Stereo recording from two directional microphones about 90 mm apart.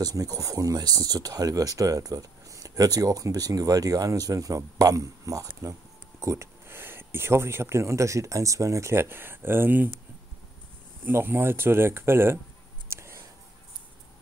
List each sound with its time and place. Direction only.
0.0 s speech: 40° right (ahead or behind); by 9.8 s 20° right (ahead or behind)
11.1 s speech: 25° right (ahead or behind)
12.8 s a sound: 30° right (ahead or behind)